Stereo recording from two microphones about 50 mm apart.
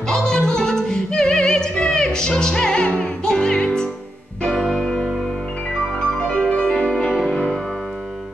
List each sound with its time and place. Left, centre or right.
0.1 s music: centre